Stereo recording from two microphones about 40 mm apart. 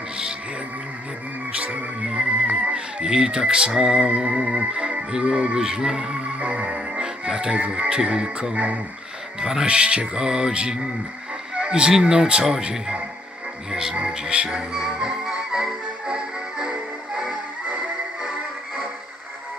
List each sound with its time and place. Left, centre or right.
1.6 s music: right
2.0 s music: centre
2.4 s music: right
6.4 s music: right
7.0 s music: centre
7.5 s music: right
8.5 s music: right
9.4 s speech: centre
9.7 s music: right
13.7 s speech: centre
14.0 s music: right